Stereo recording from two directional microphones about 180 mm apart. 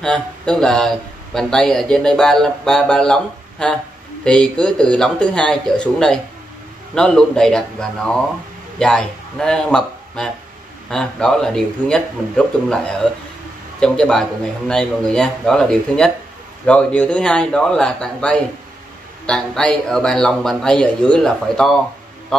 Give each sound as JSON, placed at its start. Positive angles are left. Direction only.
{"t": 0.0, "sound": "a man's voice", "side_deg": 5}